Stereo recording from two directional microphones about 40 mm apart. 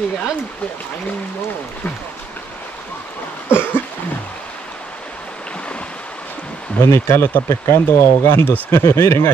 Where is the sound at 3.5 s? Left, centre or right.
Left.